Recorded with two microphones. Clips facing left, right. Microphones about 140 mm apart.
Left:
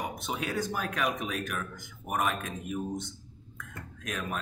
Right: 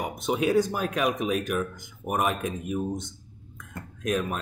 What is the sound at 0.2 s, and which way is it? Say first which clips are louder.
Speech: right 14 dB; 20° right (ahead or behind).